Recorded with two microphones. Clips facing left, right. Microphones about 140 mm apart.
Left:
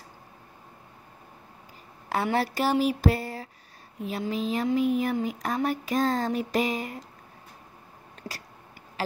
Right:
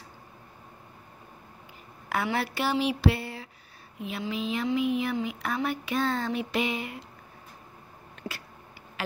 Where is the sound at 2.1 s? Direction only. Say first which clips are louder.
Left 3 dB; 35° left (ahead or behind).